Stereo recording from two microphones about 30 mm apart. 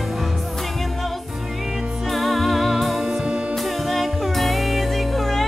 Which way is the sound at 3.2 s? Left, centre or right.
Right.